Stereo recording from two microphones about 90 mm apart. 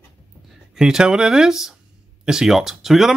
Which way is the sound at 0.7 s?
5° right (ahead or behind).